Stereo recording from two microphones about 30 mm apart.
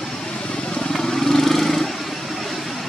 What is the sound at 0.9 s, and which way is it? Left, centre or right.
Vehicle, centre.